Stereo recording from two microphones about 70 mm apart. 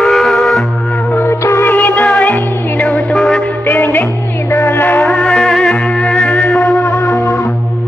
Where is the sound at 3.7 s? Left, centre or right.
Left.